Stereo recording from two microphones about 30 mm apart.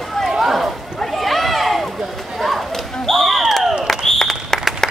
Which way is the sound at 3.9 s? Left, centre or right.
Centre.